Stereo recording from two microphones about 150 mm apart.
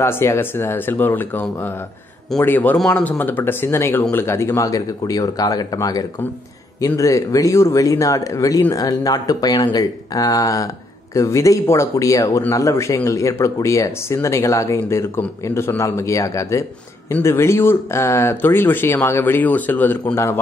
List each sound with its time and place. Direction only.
0.0 s speech: 15° left (ahead or behind)